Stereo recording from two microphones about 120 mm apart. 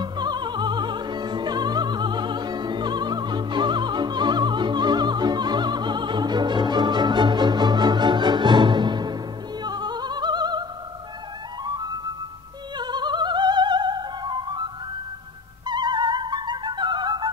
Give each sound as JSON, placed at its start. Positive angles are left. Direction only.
{"t": 0.0, "sound": "opera", "side_deg": -35}
{"t": 9.6, "sound": "music", "side_deg": -35}
{"t": 11.6, "sound": "flute", "side_deg": -35}
{"t": 12.7, "sound": "music", "side_deg": -35}